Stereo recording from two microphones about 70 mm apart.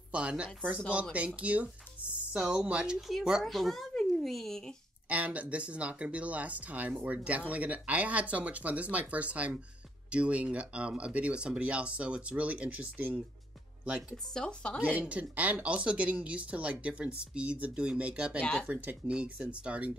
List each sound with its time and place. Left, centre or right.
0.1 s speech: centre
3.1 s speech: centre
5.1 s speech: right
14.3 s speech: centre
15.0 s speech: right
18.4 s speech: centre
18.7 s speech: centre